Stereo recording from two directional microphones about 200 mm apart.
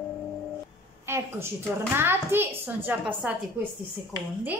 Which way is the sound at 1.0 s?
10° right (ahead or behind).